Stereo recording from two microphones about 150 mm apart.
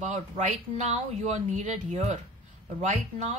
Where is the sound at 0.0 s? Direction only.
50° right (ahead or behind).